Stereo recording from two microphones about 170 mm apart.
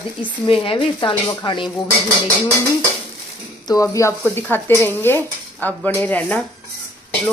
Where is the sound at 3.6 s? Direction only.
20° left (ahead or behind).